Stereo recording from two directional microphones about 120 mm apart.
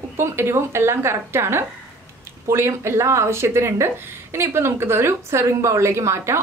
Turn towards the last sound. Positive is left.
turn(degrees=-25)  # may be behind; listen again after turning